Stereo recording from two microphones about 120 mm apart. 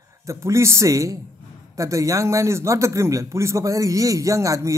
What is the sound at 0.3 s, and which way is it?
A man's voice, 25° right (ahead or behind).